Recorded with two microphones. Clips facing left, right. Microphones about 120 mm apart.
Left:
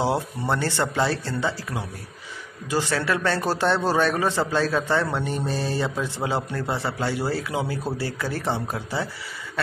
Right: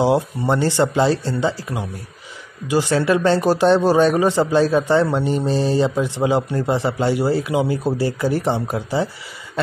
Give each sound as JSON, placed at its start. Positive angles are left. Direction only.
{"t": 0.0, "sound": "speech", "side_deg": -15}